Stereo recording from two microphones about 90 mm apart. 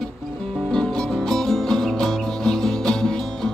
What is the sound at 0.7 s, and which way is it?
Music, 10° left (ahead or behind).